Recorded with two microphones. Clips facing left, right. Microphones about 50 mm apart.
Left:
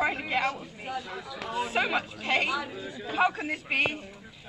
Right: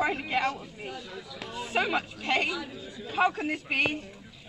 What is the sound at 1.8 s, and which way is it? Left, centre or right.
A woman's voice, centre.